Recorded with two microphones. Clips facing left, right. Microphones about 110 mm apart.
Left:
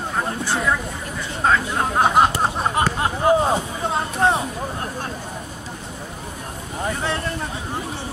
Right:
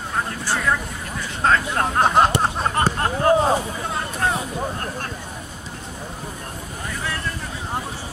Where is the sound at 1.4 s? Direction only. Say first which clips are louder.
Even; 5° left (ahead or behind).